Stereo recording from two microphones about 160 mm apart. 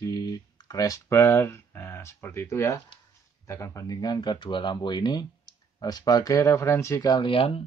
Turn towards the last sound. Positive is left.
turn(degrees=35)  # may be behind; listen again after turning